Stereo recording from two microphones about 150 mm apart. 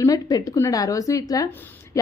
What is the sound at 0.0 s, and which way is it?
A woman's voice, 25° left (ahead or behind).